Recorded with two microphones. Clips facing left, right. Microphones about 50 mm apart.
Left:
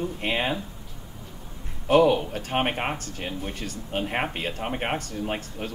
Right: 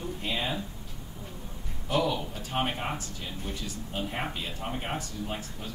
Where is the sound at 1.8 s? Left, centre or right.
Left.